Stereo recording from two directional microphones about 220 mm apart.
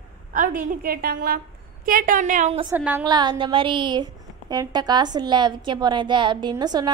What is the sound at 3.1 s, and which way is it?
A woman's voice, 20° right (ahead or behind).